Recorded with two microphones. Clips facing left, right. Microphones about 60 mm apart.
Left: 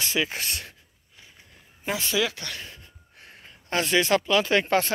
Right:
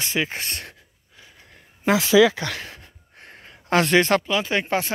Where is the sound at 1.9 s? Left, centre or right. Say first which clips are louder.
Right 10 dB; right.